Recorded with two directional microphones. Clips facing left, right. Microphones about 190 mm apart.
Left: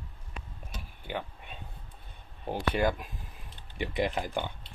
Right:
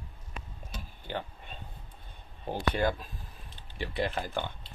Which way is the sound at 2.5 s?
10° left (ahead or behind).